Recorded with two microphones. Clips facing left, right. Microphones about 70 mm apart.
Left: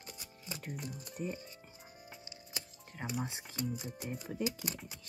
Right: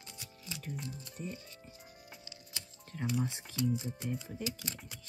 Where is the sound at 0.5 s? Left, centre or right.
Left.